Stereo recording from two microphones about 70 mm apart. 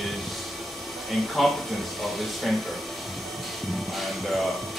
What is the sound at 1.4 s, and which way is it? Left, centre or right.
Speech, centre.